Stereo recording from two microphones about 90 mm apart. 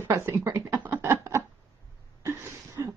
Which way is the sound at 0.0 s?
30° right (ahead or behind).